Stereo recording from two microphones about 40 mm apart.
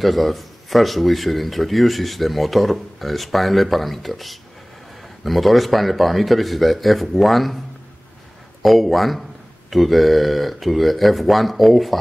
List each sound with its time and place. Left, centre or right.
0.0 s speech: centre
8.6 s speech: centre